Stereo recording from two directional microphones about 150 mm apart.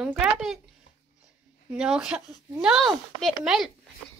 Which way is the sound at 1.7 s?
5° right (ahead or behind).